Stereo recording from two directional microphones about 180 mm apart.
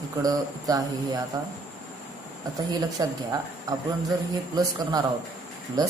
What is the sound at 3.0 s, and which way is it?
Speech, 20° right (ahead or behind).